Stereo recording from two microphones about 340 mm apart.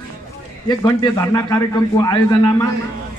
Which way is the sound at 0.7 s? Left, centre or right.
Centre.